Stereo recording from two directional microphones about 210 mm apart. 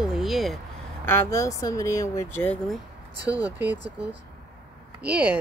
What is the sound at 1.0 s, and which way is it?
Speech, 15° left (ahead or behind).